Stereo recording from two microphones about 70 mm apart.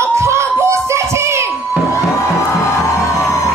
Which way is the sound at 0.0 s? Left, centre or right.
Right.